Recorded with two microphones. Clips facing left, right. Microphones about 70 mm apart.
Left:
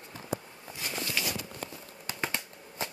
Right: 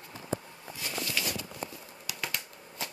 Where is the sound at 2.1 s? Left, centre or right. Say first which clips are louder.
Left 3 dB; left.